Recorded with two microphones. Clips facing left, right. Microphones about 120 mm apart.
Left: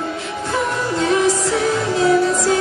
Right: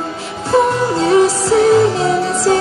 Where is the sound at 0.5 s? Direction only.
35° right (ahead or behind).